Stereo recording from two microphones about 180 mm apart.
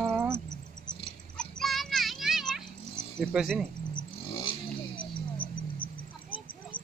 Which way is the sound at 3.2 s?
Centre (ahead or behind).